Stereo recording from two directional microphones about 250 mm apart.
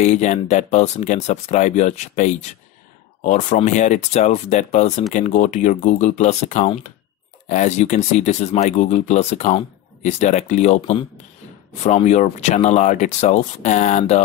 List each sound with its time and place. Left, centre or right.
0.0 s speech: left